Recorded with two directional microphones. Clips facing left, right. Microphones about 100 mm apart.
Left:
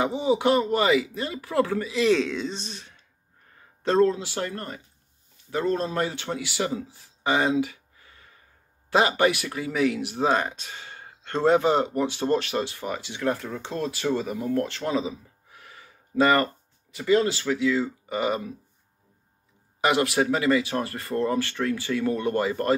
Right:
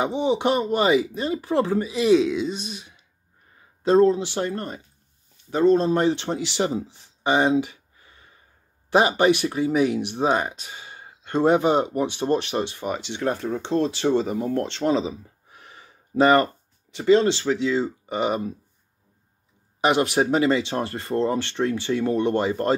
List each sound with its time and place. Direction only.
0.0 s speech: 25° right (ahead or behind)
19.8 s speech: 25° right (ahead or behind)